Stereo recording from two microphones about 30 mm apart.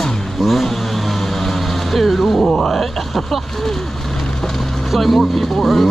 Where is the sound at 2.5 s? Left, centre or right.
Centre.